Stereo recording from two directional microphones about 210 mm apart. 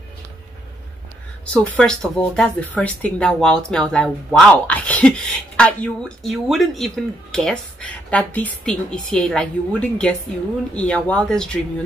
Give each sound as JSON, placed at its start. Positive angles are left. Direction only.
{"t": 1.4, "sound": "speech", "side_deg": 5}